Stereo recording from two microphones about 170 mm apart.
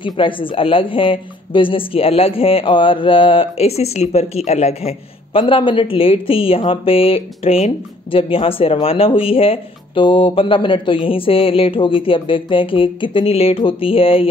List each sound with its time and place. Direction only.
0.0 s speech: 30° left (ahead or behind)